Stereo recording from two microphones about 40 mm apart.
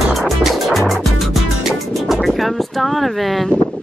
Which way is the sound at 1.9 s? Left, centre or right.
Centre.